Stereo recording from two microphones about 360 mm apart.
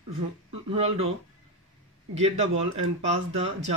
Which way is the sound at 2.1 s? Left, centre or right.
Centre.